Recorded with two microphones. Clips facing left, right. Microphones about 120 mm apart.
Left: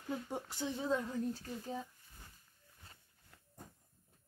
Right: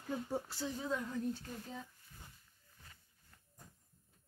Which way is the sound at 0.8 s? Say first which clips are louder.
Left 4 dB; 30° left (ahead or behind).